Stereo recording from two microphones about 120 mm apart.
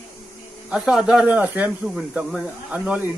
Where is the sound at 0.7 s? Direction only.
5° right (ahead or behind).